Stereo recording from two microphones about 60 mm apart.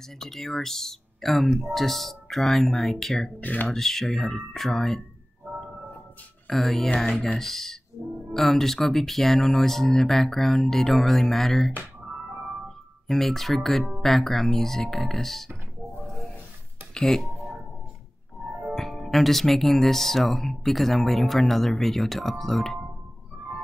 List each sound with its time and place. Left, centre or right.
0.2 s speech: centre
3.3 s speech: left
3.6 s speech: centre
6.4 s speech: centre
16.9 s music: centre
18.8 s speech: centre